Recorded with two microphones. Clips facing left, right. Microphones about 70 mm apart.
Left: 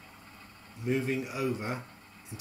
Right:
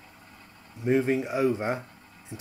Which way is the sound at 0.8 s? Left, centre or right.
Right.